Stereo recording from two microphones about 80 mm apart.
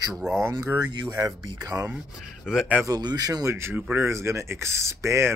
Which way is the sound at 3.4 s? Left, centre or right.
Right.